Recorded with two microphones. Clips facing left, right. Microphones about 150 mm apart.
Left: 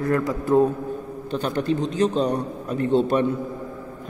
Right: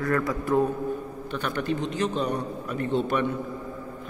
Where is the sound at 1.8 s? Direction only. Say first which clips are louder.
Left 5 dB; 35° left (ahead or behind).